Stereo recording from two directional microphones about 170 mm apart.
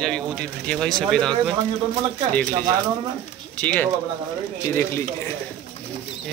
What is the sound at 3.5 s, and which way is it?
Speech, 10° left (ahead or behind).